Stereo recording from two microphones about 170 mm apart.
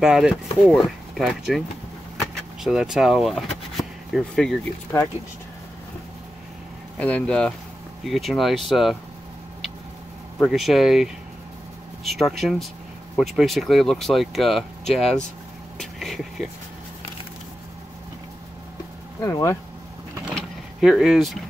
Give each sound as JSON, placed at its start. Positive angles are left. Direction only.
{"t": 0.0, "sound": "speech", "side_deg": -5}
{"t": 2.6, "sound": "speech", "side_deg": -5}
{"t": 4.9, "sound": "speech", "side_deg": 15}
{"t": 7.0, "sound": "speech", "side_deg": 5}
{"t": 10.4, "sound": "speech", "side_deg": 0}
{"t": 15.8, "sound": "vehicle", "side_deg": 0}
{"t": 19.2, "sound": "speech", "side_deg": 20}
{"t": 20.3, "sound": "vehicle", "side_deg": 0}